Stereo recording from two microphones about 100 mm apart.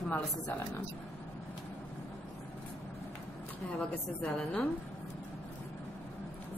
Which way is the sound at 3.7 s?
15° left (ahead or behind).